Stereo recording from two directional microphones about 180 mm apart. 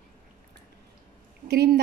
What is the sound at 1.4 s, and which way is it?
Speech, 70° right (ahead or behind).